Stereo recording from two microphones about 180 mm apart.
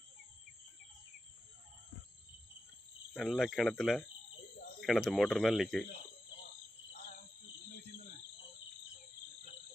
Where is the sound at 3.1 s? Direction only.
5° left (ahead or behind).